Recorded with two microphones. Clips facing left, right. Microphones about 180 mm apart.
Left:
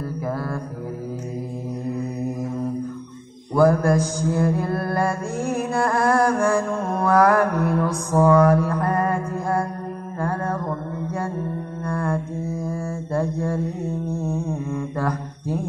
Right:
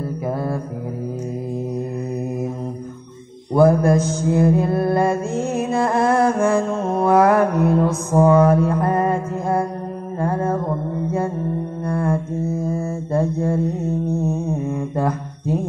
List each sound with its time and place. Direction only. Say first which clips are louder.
3.5 s mantra: right 3 dB; 25° right (ahead or behind)
11.8 s music: right 3 dB; 20° right (ahead or behind)
12.6 s mantra: right 4 dB; 20° right (ahead or behind)